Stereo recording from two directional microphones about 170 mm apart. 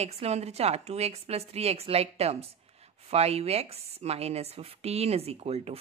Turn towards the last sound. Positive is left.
turn(degrees=-35)  # may be behind; listen again after turning